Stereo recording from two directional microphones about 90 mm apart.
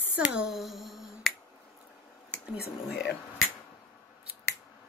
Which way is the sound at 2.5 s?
5° right (ahead or behind).